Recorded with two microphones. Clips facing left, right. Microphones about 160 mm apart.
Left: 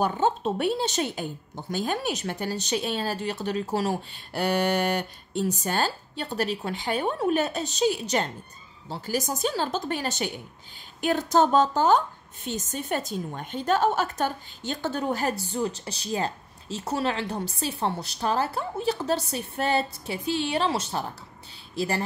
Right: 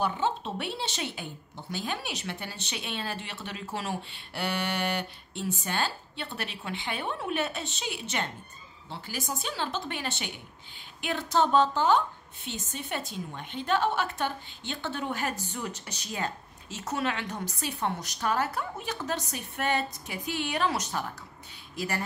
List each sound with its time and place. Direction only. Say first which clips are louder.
0.0 s a woman's voice: left 5 dB; 45° left (ahead or behind)